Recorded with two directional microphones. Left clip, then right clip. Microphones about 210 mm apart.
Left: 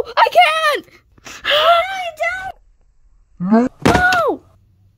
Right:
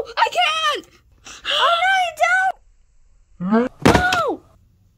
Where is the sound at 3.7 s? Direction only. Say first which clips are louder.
Left 2 dB; centre (ahead or behind).